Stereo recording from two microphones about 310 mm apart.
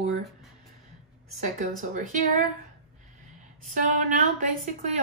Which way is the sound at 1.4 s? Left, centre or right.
Right.